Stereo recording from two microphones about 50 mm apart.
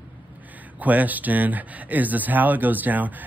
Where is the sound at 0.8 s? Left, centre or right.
Right.